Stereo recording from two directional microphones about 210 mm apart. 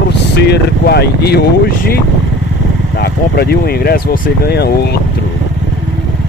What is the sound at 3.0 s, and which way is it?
Speech, 50° left (ahead or behind).